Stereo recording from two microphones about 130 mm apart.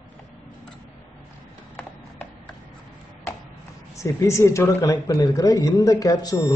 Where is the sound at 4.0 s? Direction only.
25° left (ahead or behind).